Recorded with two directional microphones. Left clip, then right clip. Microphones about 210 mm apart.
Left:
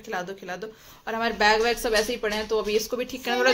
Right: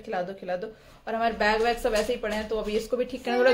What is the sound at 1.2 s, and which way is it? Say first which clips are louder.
Speech: left 3 dB; 30° left (ahead or behind).